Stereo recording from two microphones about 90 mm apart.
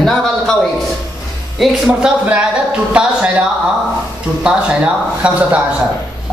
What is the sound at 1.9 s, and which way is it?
Speech, 10° right (ahead or behind).